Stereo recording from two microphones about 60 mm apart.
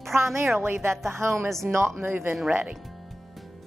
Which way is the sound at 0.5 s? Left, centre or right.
Right.